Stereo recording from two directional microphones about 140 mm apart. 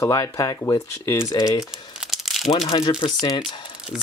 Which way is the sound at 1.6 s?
5° right (ahead or behind).